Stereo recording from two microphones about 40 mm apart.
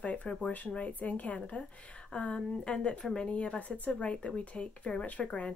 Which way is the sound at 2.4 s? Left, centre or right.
Left.